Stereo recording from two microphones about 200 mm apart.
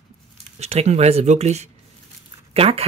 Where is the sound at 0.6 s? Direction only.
30° right (ahead or behind).